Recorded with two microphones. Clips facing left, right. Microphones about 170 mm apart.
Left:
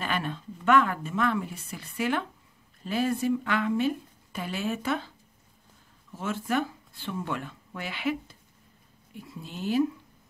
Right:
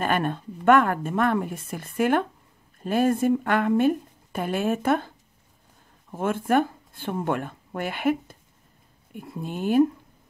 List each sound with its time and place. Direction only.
0.0 s a woman's voice: 50° right (ahead or behind)
6.1 s a woman's voice: 50° right (ahead or behind)